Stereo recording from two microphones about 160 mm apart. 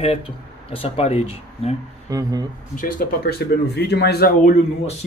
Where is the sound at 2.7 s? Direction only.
60° left (ahead or behind).